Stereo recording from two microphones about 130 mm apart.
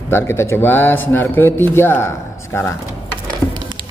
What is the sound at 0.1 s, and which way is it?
Speech, 20° left (ahead or behind).